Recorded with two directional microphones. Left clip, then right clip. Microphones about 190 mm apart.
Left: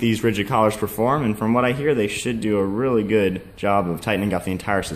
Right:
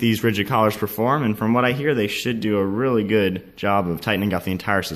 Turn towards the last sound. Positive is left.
turn(degrees=0)  # may be behind; listen again after turning